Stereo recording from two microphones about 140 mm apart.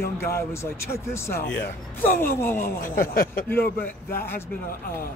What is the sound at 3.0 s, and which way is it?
Speech, 90° left.